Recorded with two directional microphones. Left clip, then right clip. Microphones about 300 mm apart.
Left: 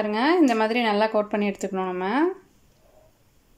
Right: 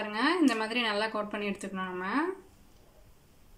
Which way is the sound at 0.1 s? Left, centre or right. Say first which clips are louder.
Left 6 dB; centre.